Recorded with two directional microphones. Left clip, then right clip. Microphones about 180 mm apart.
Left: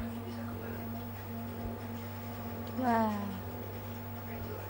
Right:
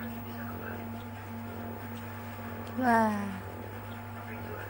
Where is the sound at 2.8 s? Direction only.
15° right (ahead or behind).